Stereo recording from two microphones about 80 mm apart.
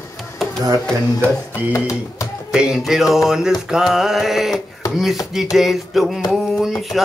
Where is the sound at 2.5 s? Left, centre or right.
Centre.